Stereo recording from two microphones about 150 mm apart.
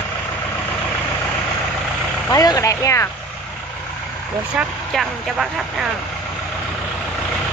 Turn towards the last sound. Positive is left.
turn(degrees=-5)  # may be behind; listen again after turning